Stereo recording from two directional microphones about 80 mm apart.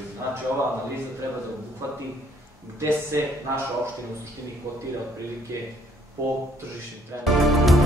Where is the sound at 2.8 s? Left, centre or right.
Right.